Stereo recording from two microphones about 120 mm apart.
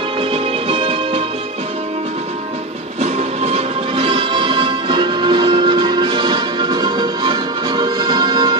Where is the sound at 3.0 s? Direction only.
60° right (ahead or behind).